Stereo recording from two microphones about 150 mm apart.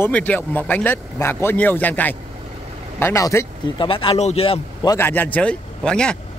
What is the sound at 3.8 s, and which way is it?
Speech, 35° left (ahead or behind).